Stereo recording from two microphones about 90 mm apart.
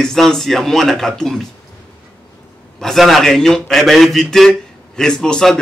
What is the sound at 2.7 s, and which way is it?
A man's voice, 5° left (ahead or behind).